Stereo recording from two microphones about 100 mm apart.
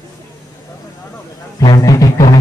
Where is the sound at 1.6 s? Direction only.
35° left (ahead or behind).